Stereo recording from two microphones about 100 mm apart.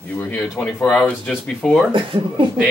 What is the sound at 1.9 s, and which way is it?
Speech, 55° right (ahead or behind).